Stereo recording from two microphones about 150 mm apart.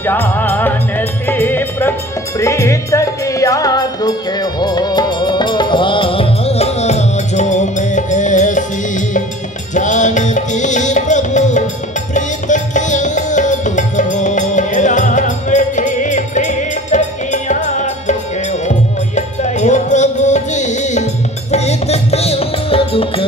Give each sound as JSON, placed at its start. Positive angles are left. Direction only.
{"t": 0.0, "sound": "music", "side_deg": 15}